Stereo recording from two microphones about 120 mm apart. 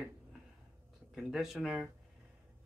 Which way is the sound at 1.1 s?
5° right (ahead or behind).